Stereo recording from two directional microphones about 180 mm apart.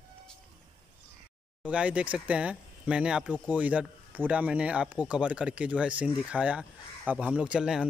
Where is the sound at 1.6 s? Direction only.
5° right (ahead or behind).